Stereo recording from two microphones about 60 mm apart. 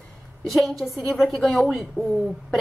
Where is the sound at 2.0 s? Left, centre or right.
Left.